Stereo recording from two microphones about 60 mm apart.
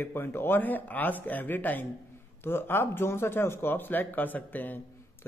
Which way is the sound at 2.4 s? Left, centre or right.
Left.